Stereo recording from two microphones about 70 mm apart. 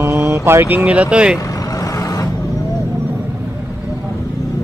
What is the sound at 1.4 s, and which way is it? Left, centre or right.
Vehicle, left.